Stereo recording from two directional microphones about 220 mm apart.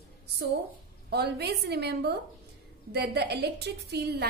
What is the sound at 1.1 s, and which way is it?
A woman's voice, 50° right (ahead or behind).